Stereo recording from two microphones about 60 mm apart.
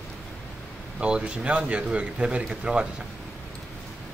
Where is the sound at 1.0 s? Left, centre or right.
Centre.